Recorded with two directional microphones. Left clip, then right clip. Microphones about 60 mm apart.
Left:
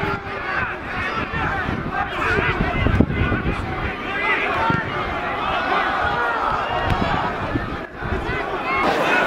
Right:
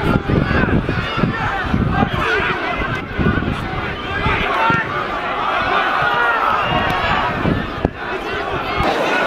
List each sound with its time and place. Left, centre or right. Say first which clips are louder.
4.2 s run: right 3 dB; right
8.8 s run: right 1 dB; left